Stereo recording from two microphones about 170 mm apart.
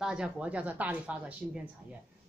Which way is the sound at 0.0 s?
5° right (ahead or behind).